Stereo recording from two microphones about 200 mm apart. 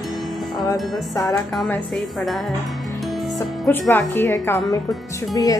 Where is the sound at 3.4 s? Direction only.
10° left (ahead or behind).